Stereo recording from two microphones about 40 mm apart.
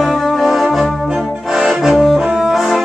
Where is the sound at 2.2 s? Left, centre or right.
Centre.